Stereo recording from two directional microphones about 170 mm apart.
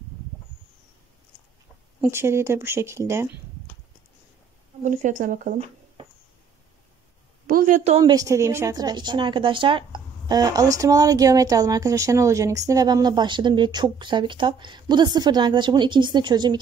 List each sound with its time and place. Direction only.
2.0 s speech: 15° right (ahead or behind)
4.8 s speech: 50° right (ahead or behind)
7.4 s a woman's voice: 55° right (ahead or behind)
8.0 s a woman's voice: 20° right (ahead or behind)